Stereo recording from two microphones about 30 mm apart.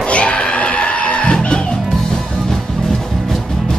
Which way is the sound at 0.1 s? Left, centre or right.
Left.